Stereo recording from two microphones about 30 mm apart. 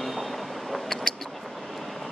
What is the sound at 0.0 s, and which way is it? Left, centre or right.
Vehicle, centre.